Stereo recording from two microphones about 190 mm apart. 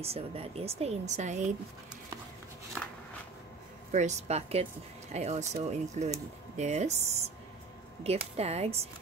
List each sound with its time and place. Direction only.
0.0 s speech: 30° right (ahead or behind)
2.8 s a sound: 5° left (ahead or behind)
3.9 s speech: 35° right (ahead or behind)